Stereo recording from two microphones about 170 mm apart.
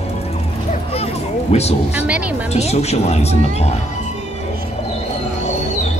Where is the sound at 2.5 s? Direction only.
40° left (ahead or behind).